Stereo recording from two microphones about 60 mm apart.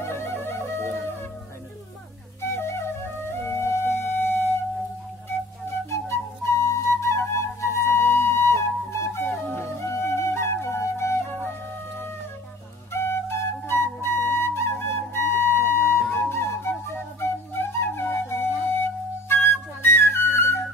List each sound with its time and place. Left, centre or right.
0.0 s flute: left
2.4 s flute: left
3.3 s music: left
5.7 s flute: left
12.9 s flute: left